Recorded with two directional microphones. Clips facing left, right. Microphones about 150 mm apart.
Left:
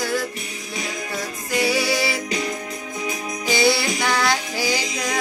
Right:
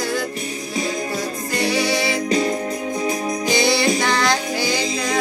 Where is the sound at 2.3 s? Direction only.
30° right (ahead or behind).